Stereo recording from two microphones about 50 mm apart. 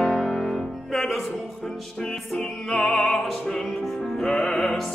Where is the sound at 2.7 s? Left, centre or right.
Centre.